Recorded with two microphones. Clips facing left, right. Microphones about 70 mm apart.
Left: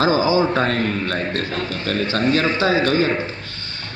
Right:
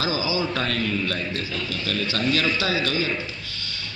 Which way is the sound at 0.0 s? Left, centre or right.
Left.